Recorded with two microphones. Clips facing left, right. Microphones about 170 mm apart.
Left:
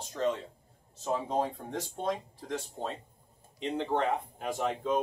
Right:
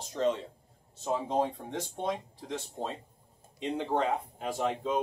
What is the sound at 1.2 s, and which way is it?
Speech, 5° right (ahead or behind).